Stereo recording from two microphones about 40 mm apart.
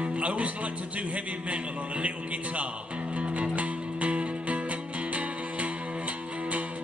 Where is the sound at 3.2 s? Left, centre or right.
Right.